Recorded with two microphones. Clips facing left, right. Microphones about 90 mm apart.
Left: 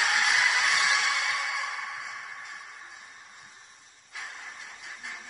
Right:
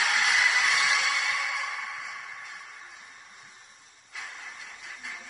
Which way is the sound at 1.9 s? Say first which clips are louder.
Even; 15° left (ahead or behind).